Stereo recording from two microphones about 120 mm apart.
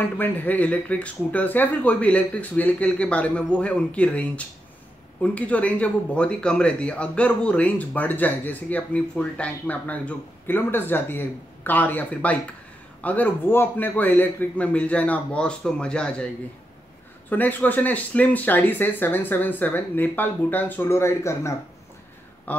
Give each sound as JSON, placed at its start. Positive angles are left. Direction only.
{"t": 0.2, "sound": "speech", "side_deg": 15}
{"t": 17.3, "sound": "speech", "side_deg": 15}